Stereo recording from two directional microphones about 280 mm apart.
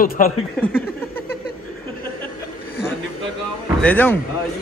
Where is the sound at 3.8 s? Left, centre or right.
Centre.